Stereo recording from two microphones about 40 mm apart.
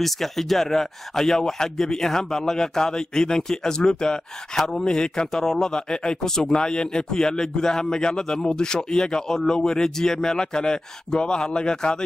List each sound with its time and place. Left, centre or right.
0.0 s a man's voice: centre